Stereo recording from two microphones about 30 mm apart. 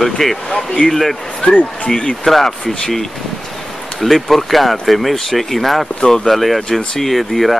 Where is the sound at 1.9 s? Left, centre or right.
Left.